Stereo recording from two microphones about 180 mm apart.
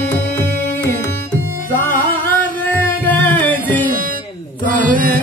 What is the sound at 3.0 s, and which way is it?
Music, 10° left (ahead or behind).